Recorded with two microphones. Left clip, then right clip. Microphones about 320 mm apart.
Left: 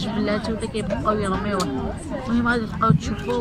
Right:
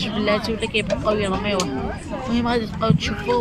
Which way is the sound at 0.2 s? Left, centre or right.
Centre.